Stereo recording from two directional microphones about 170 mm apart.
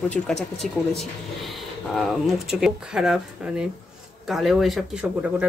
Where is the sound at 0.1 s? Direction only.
Centre (ahead or behind).